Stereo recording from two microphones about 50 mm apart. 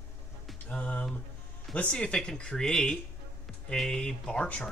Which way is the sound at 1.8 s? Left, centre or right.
Centre.